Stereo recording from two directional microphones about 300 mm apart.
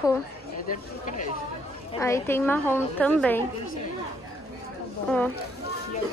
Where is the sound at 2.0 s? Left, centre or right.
Centre.